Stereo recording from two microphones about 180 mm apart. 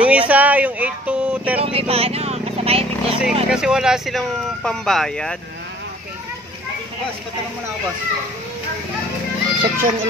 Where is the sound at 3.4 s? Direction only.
5° right (ahead or behind).